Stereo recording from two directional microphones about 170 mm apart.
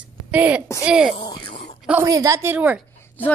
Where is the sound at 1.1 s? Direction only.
25° left (ahead or behind).